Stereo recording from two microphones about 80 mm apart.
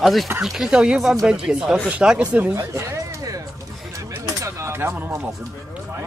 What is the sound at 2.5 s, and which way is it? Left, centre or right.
Speech, right.